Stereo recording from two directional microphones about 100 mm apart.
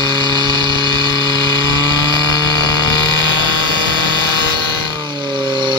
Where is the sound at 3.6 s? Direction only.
50° right (ahead or behind).